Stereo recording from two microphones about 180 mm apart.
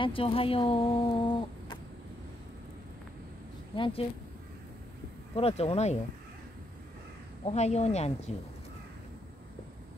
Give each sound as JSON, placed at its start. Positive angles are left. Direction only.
{"t": 0.0, "sound": "speech", "side_deg": 30}
{"t": 3.7, "sound": "speech", "side_deg": 30}
{"t": 5.3, "sound": "speech", "side_deg": 35}
{"t": 7.4, "sound": "speech", "side_deg": 40}